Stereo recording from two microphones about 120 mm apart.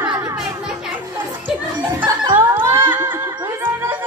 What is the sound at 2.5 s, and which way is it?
Music, 15° right (ahead or behind).